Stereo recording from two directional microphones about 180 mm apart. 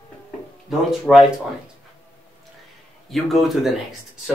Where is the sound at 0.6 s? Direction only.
Centre (ahead or behind).